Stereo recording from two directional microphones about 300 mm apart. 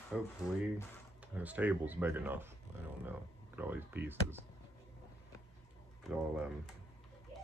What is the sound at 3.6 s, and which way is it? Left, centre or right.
Speech, centre.